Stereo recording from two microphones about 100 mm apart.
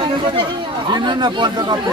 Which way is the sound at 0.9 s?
50° right (ahead or behind).